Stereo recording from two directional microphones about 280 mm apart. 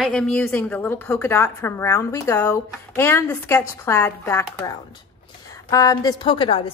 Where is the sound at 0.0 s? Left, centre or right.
Centre.